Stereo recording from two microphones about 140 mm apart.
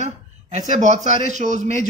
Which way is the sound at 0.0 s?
55° right (ahead or behind).